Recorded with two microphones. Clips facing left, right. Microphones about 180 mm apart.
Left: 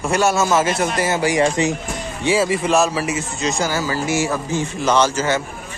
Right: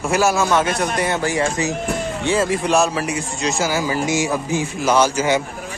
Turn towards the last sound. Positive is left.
turn(degrees=-15)  # may be behind; listen again after turning